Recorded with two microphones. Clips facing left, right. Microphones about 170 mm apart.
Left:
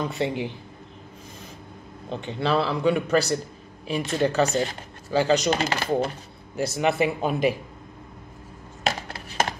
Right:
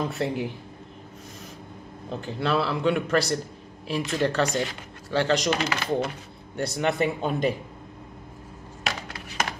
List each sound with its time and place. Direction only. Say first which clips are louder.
0.0 s a man's voice: left 1 dB; centre (ahead or behind)
2.0 s a man's voice: left 2 dB; 5° right (ahead or behind)
5.5 s speech: left 2 dB; 30° left (ahead or behind)
6.5 s a man's voice: left 2 dB; 5° left (ahead or behind)
8.8 s a sound: left 5 dB; 30° left (ahead or behind)